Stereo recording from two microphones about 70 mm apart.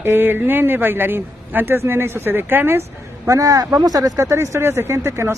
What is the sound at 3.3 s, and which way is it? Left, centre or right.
A man's voice, right.